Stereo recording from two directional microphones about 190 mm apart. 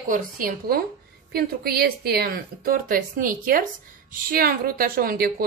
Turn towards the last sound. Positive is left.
turn(degrees=-50)  # may be behind; listen again after turning